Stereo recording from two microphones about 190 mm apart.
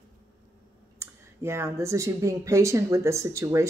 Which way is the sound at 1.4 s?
15° right (ahead or behind).